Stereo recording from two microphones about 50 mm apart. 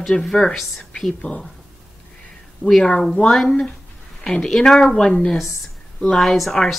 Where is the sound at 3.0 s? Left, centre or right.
Centre.